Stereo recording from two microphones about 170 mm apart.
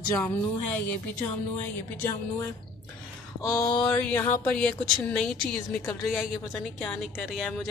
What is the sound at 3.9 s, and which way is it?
Speech, 10° left (ahead or behind).